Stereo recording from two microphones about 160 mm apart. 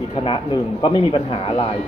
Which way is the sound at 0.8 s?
35° left (ahead or behind).